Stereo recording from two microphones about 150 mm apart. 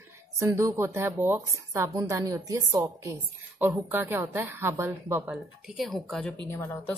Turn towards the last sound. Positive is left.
turn(degrees=15)  # may be behind; listen again after turning